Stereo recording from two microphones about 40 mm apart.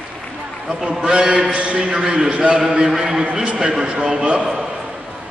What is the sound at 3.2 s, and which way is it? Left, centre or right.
Speech, right.